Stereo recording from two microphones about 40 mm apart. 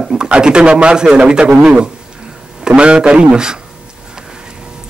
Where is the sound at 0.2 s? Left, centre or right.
Right.